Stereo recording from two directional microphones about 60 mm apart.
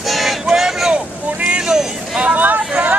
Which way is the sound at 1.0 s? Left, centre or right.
Right.